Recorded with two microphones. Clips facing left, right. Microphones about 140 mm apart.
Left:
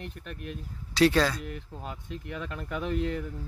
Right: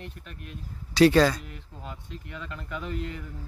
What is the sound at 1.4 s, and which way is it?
Speech, 50° left (ahead or behind).